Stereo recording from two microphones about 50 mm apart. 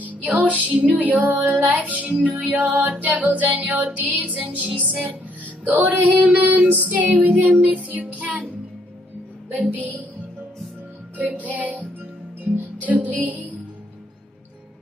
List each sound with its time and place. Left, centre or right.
0.0 s music: right
9.7 s music: right
11.1 s music: right